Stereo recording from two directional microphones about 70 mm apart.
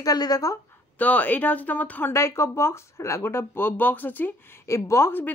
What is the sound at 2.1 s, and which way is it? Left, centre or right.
Speech, left.